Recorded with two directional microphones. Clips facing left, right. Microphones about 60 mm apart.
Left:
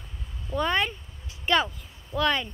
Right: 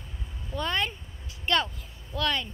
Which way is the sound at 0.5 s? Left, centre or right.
Centre.